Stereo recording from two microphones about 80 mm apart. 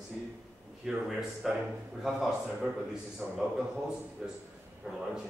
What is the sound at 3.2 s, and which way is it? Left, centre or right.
Speech, right.